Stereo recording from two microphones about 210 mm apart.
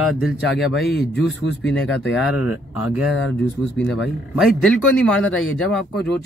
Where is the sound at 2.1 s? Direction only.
5° right (ahead or behind).